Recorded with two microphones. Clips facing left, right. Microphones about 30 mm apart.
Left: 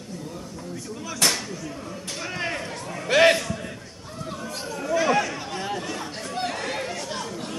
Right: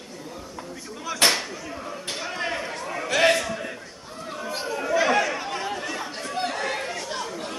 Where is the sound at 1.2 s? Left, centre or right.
Right.